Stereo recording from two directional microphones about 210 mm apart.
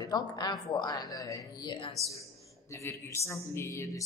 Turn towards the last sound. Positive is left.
turn(degrees=15)  # may be behind; listen again after turning